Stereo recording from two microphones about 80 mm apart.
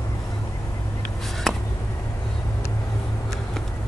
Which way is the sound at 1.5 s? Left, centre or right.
Centre.